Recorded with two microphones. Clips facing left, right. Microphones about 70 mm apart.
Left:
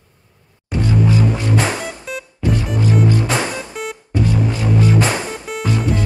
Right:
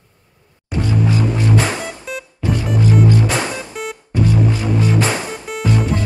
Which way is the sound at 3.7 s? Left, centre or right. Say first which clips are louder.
Even; centre.